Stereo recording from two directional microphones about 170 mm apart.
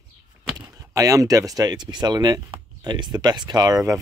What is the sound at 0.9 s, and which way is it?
Speech, 20° right (ahead or behind).